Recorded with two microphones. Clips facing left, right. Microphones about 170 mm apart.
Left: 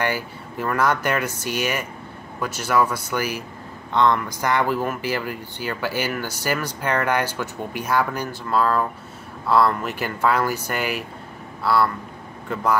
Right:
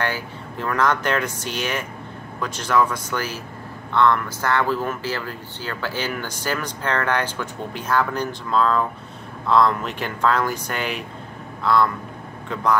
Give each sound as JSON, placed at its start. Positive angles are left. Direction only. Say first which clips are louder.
{"t": 0.0, "sound": "speech", "louder": "left 1 dB", "side_deg": 10}